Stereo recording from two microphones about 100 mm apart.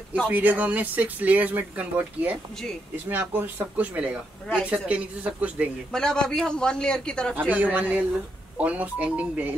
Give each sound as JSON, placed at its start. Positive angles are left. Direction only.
{"t": 0.3, "sound": "speech", "side_deg": -15}
{"t": 5.9, "sound": "a man's voice", "side_deg": 5}
{"t": 7.3, "sound": "speech", "side_deg": -15}